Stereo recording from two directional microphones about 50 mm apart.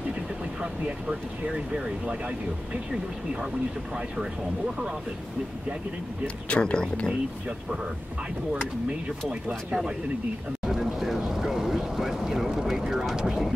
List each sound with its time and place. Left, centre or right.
0.8 s speech: centre
6.2 s speech: left
10.6 s a sound: centre
13.1 s vehicle: centre